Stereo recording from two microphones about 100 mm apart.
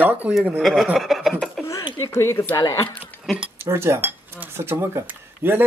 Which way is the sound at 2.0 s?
30° left (ahead or behind).